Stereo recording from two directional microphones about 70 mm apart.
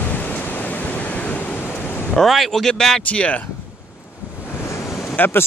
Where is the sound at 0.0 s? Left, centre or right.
Left.